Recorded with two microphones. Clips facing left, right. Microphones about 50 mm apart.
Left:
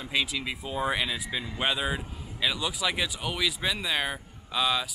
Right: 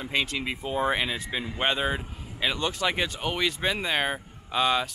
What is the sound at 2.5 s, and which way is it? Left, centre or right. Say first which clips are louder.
Speech: right 2 dB; centre.